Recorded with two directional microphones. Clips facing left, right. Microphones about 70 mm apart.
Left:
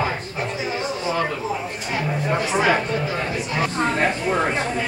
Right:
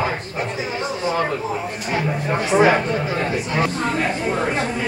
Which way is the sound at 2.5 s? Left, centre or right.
Right.